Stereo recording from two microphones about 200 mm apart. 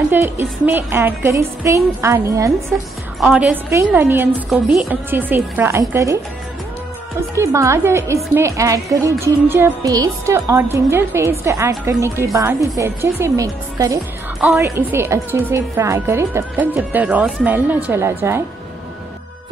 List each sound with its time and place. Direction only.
0.1 s a woman's voice: 10° right (ahead or behind)
2.7 s a woman's voice: centre (ahead or behind)
7.2 s a woman's voice: 15° right (ahead or behind)